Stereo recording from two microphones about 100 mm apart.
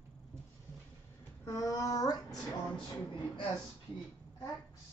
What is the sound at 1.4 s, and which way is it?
Speech, 30° left (ahead or behind).